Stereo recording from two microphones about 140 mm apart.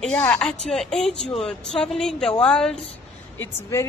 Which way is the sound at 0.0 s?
10° left (ahead or behind).